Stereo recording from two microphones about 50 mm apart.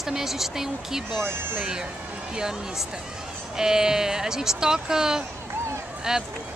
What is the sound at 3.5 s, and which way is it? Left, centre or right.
Speech, centre.